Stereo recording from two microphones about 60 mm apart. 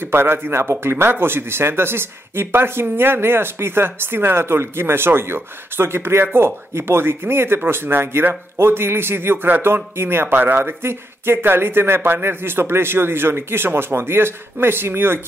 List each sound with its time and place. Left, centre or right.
0.0 s speech: right